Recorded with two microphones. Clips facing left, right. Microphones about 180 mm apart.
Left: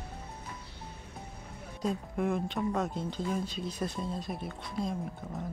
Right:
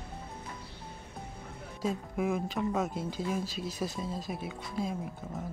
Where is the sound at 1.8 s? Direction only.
5° right (ahead or behind).